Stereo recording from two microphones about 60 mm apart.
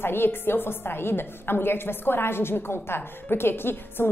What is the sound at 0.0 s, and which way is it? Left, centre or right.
A woman's voice, left.